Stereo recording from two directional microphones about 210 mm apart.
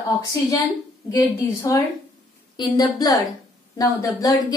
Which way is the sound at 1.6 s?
15° left (ahead or behind).